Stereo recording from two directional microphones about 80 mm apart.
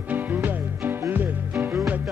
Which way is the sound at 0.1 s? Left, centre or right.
Right.